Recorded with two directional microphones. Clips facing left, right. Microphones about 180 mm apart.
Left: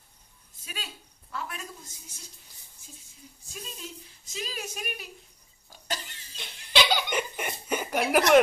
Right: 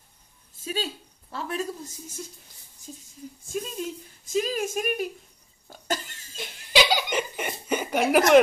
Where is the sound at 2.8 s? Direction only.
40° right (ahead or behind).